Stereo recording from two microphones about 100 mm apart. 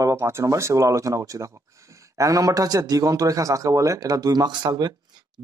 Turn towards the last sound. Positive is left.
turn(degrees=-45)  # may be behind; listen again after turning